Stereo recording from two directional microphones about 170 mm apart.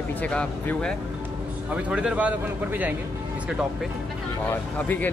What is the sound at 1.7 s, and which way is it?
A man's voice, 5° right (ahead or behind).